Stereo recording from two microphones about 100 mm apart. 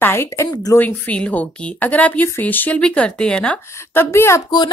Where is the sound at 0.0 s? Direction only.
25° left (ahead or behind).